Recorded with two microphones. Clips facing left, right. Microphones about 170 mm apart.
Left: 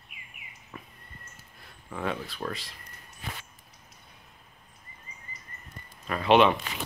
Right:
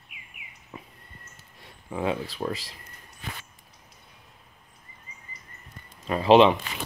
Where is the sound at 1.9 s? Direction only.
30° right (ahead or behind).